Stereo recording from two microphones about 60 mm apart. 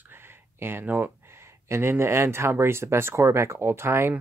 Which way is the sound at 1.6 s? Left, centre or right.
Right.